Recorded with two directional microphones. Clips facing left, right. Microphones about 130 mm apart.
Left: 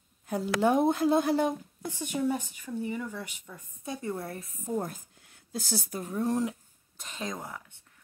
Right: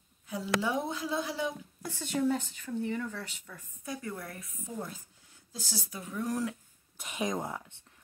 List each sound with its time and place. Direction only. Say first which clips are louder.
0.3 s a woman's voice: left 6 dB; 55° left (ahead or behind)
1.8 s speech: right 4 dB; 15° left (ahead or behind)
4.6 s a woman's voice: left 8 dB; 50° left (ahead or behind)
6.2 s speech: left 4 dB; 25° left (ahead or behind)
7.0 s speech: right 4 dB; 15° right (ahead or behind)